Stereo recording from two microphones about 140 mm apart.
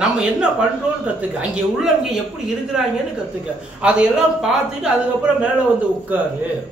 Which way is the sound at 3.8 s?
5° right (ahead or behind).